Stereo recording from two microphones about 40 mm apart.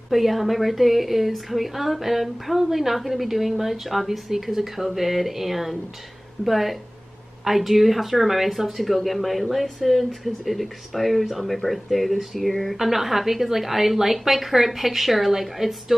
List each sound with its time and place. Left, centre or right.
0.1 s a woman's voice: centre